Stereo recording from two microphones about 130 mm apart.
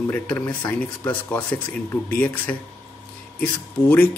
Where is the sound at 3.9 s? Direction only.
15° left (ahead or behind).